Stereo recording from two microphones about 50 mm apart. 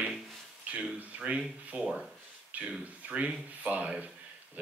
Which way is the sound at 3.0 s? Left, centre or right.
Right.